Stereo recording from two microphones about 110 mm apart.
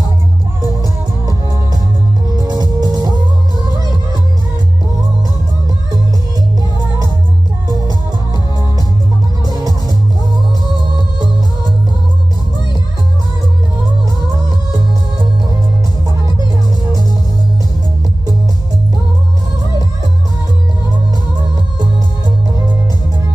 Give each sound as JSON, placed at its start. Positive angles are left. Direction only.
{"t": 2.3, "sound": "music", "side_deg": -35}
{"t": 7.6, "sound": "music", "side_deg": -35}
{"t": 9.4, "sound": "music", "side_deg": -35}